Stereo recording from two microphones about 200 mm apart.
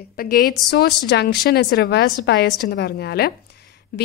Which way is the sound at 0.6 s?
60° left (ahead or behind).